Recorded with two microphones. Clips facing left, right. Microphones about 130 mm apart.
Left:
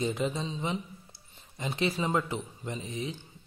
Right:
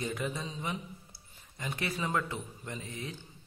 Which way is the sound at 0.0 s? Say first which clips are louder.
Left 5 dB; 20° left (ahead or behind).